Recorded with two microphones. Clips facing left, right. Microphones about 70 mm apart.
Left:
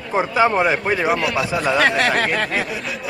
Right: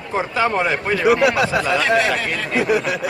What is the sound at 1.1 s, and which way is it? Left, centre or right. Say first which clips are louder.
Speech: right 4 dB; right.